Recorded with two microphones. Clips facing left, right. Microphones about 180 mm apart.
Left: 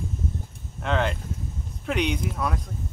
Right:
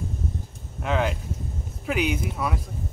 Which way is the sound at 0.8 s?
5° right (ahead or behind).